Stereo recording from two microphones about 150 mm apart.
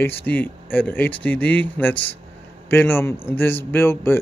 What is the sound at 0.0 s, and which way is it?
Speech, 10° left (ahead or behind).